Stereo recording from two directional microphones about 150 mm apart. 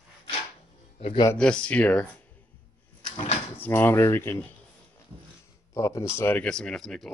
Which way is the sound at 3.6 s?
15° left (ahead or behind).